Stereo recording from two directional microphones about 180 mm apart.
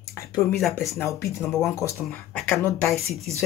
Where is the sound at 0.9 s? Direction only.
15° left (ahead or behind).